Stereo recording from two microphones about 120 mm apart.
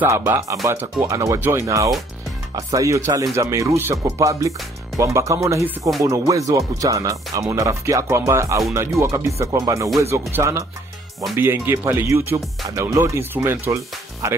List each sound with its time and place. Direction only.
0.0 s speech: 20° right (ahead or behind)